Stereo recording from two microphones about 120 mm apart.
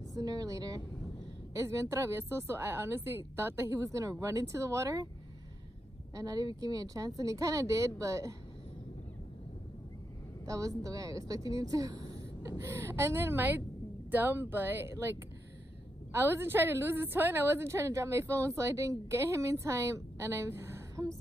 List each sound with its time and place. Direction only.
0.1 s a woman's voice: 30° right (ahead or behind)
6.1 s a woman's voice: 30° right (ahead or behind)
10.4 s a woman's voice: 30° right (ahead or behind)